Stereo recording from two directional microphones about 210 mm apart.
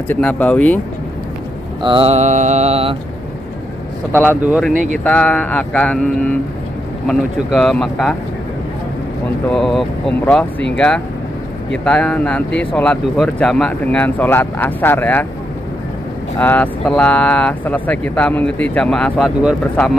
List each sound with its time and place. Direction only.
0.1 s speech: 5° left (ahead or behind)
1.8 s mantra: 25° right (ahead or behind)
4.3 s speech: 10° right (ahead or behind)
4.9 s speech: 5° left (ahead or behind)
9.5 s speech: centre (ahead or behind)
11.8 s speech: 5° left (ahead or behind)
16.3 s speech: 10° left (ahead or behind)